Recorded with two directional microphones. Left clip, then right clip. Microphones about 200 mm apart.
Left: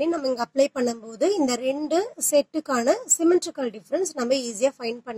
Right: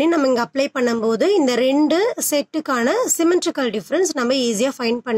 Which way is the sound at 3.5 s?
10° right (ahead or behind).